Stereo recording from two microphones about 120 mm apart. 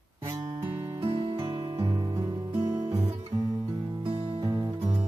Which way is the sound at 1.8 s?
30° right (ahead or behind).